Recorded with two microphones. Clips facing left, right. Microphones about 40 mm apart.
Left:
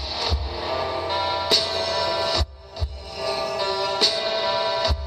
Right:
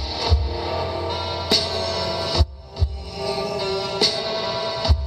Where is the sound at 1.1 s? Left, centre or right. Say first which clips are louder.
Left 3 dB; left.